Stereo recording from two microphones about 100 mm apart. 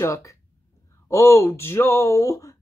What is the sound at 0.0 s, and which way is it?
Speech, 30° left (ahead or behind).